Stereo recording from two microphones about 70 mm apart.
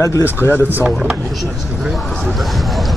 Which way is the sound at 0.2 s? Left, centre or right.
Left.